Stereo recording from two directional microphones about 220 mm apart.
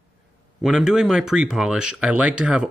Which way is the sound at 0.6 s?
Centre (ahead or behind).